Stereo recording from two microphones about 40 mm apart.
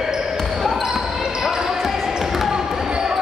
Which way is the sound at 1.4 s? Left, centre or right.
Centre.